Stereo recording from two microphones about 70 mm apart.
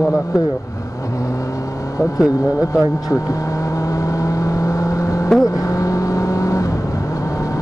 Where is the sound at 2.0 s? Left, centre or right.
Left.